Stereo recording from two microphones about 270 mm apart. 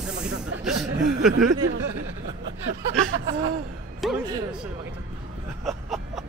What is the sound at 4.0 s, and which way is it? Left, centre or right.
Speech, centre.